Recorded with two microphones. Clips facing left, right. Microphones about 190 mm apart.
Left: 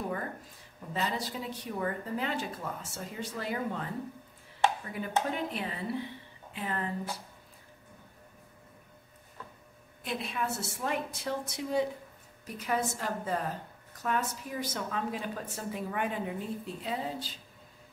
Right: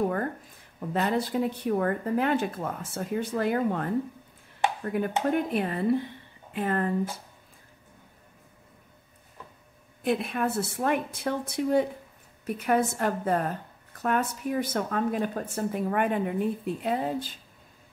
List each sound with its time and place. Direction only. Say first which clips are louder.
0.7 s a woman's voice: right 7 dB; 55° right (ahead or behind)
10.0 s a woman's voice: right 8 dB; 55° right (ahead or behind)